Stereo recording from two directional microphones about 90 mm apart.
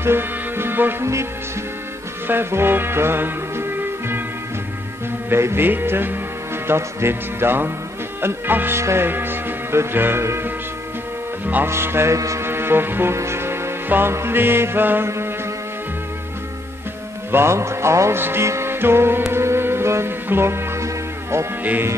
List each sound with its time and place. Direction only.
0.0 s music: 25° right (ahead or behind)
2.2 s music: 25° right (ahead or behind)
5.3 s music: 25° right (ahead or behind)
17.3 s music: 30° right (ahead or behind)